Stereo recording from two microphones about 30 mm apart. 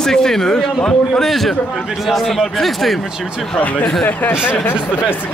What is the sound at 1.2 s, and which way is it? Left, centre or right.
Speech, centre.